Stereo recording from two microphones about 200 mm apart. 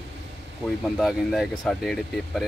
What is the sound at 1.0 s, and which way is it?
Speech, centre (ahead or behind).